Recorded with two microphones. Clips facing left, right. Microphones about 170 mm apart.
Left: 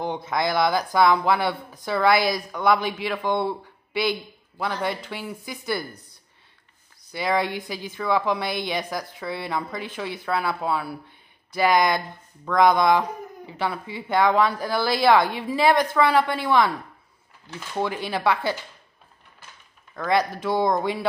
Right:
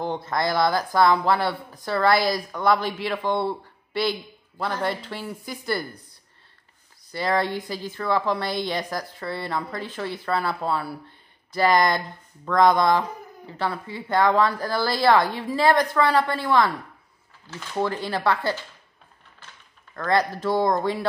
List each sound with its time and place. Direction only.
0.1 s speech: centre (ahead or behind)
7.1 s speech: 5° left (ahead or behind)
20.0 s speech: 5° left (ahead or behind)